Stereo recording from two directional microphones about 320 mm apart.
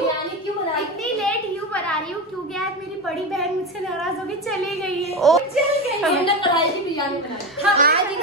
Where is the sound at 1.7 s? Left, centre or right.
Centre.